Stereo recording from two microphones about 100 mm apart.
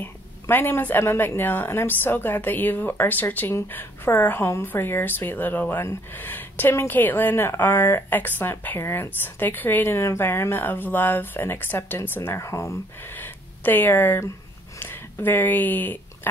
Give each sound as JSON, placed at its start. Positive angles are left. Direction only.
{"t": 0.0, "sound": "speech", "side_deg": 20}